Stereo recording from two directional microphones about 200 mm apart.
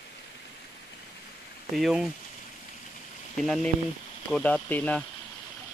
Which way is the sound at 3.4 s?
Centre (ahead or behind).